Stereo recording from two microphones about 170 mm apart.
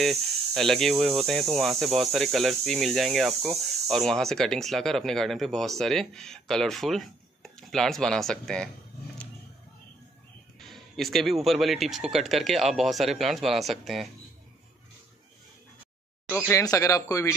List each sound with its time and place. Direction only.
0.0 s speech: centre (ahead or behind)
10.6 s speech: centre (ahead or behind)
16.3 s speech: 15° left (ahead or behind)